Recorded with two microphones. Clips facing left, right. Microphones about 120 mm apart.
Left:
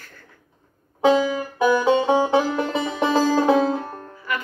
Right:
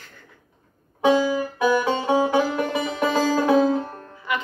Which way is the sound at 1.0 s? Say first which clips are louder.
Left 1 dB; 25° left (ahead or behind).